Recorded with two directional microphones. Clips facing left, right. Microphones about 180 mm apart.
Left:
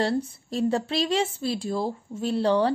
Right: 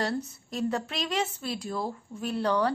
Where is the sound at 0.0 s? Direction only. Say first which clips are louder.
Left 5 dB; 30° left (ahead or behind).